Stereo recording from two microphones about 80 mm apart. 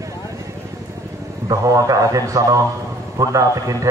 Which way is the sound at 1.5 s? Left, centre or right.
Right.